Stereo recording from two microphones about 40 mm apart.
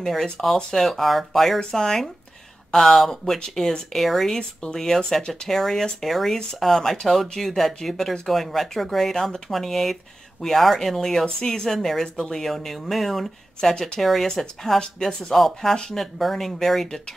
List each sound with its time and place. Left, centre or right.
0.0 s speech: centre
1.6 s speech: centre
4.3 s speech: left
4.7 s speech: centre
13.6 s speech: centre
15.3 s speech: centre
15.7 s speech: centre
16.0 s speech: centre